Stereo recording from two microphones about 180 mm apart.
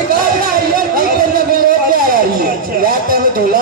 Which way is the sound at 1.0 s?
55° right (ahead or behind).